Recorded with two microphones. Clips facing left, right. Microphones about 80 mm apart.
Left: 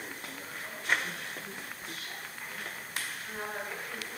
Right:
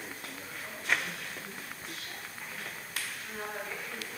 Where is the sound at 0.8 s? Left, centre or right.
Left.